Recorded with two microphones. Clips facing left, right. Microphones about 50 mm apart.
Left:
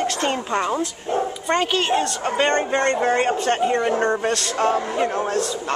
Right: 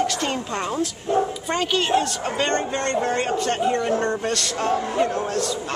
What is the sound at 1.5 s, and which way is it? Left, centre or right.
Speech, centre.